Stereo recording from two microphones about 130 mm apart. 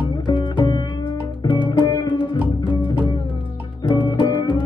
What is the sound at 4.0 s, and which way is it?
Music, 35° left (ahead or behind).